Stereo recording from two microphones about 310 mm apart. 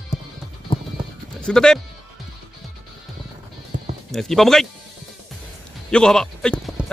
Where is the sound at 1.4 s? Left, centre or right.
Centre.